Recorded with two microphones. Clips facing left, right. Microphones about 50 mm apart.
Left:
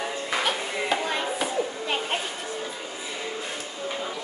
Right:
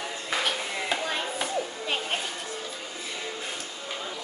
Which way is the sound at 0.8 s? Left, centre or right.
Centre.